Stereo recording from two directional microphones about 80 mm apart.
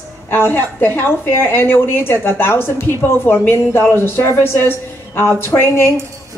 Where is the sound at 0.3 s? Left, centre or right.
Left.